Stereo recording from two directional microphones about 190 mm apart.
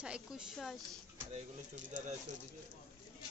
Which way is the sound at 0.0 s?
5° right (ahead or behind).